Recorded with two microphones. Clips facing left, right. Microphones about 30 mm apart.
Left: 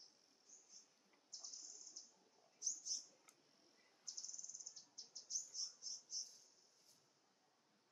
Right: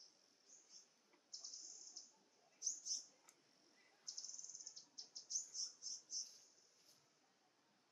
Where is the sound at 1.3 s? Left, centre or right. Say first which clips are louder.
Even; right.